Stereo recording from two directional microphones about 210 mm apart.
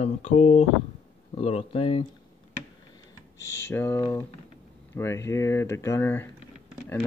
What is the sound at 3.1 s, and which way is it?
Speech, 15° left (ahead or behind).